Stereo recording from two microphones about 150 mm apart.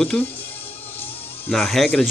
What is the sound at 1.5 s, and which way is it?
Speech, centre (ahead or behind).